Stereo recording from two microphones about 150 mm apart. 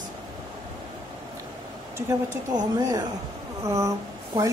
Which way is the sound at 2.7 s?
25° right (ahead or behind).